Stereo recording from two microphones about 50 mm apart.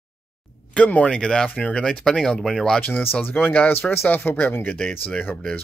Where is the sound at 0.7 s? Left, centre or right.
Left.